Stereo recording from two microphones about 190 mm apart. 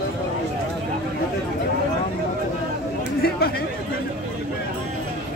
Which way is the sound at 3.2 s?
55° left (ahead or behind).